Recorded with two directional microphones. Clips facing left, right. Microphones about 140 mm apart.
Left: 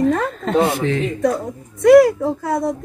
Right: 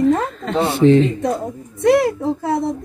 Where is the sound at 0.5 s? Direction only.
30° right (ahead or behind).